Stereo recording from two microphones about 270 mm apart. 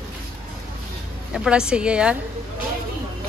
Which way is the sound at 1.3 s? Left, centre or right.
Centre.